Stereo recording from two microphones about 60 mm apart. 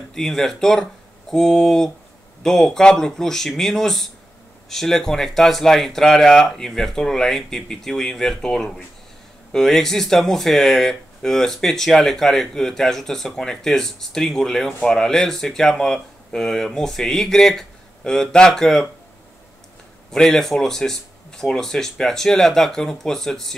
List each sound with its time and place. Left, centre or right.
0.1 s speech: centre
20.1 s speech: centre